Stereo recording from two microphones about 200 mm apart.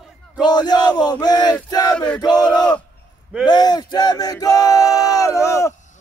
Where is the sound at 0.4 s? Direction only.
20° left (ahead or behind).